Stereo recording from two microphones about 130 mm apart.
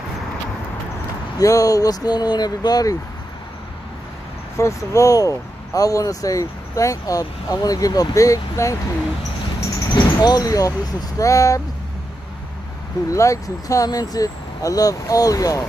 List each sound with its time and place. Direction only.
1.4 s speech: 25° left (ahead or behind)
4.6 s speech: 25° left (ahead or behind)
9.8 s a sound: 30° left (ahead or behind)
11.1 s speech: 25° left (ahead or behind)
13.1 s speech: 25° left (ahead or behind)